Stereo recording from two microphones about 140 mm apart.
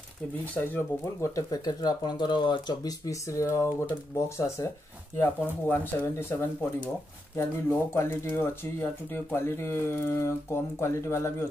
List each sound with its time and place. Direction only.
0.6 s speech: 20° left (ahead or behind)
5.1 s speech: 15° left (ahead or behind)